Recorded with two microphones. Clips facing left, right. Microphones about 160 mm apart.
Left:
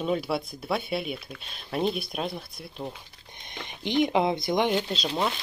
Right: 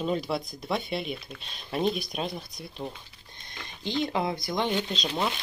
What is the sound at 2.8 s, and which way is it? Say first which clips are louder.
Speech: left 1 dB; 20° left (ahead or behind).